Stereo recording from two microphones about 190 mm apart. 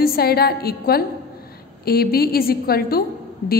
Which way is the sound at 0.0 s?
55° left (ahead or behind).